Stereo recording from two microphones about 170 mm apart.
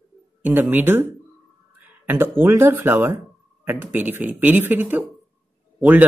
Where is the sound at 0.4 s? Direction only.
10° right (ahead or behind).